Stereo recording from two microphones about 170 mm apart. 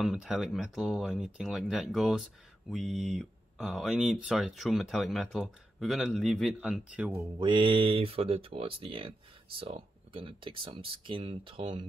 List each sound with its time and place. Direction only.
0.0 s speech: 5° right (ahead or behind)
7.3 s speech: 30° right (ahead or behind)